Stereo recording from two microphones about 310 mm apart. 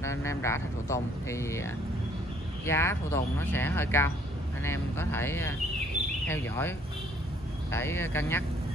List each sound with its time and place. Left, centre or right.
0.0 s speech: centre
7.7 s speech: centre